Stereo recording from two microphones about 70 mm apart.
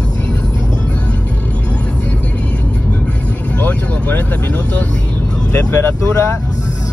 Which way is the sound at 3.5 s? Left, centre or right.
Left.